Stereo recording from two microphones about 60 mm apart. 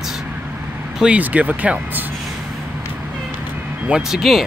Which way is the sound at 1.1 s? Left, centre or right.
Right.